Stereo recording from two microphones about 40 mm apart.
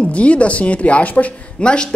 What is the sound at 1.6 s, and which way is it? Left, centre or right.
Speech, left.